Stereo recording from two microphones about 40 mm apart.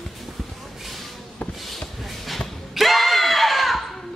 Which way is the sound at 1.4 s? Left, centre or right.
Left.